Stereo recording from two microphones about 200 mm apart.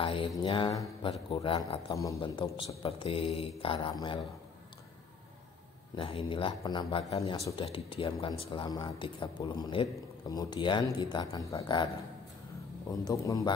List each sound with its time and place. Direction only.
0.0 s mantra: 25° left (ahead or behind)
0.4 s speech: 25° left (ahead or behind)
5.9 s speech: 25° left (ahead or behind)
13.0 s speech: 15° left (ahead or behind)